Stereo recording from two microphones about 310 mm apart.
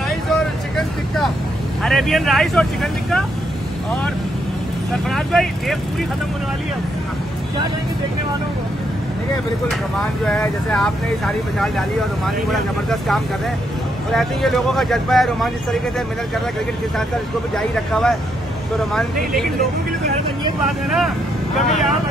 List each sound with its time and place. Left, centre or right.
0.3 s vehicle: centre
1.8 s speech: centre
5.1 s speech: centre
9.7 s speech: centre
17.6 s speech: centre
20.6 s speech: centre